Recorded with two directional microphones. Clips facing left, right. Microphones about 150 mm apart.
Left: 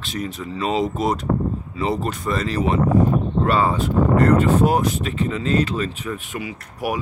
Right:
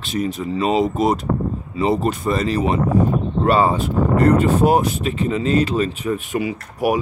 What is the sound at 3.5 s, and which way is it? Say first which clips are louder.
Speech: right 4 dB; 30° right (ahead or behind).